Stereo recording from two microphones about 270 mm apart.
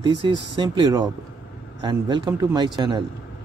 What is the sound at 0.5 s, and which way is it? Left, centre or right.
A man's voice, centre.